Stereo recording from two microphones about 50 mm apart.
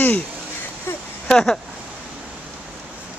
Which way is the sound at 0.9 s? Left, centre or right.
Left.